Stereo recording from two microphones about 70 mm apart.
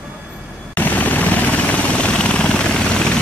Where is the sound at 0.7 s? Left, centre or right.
Left.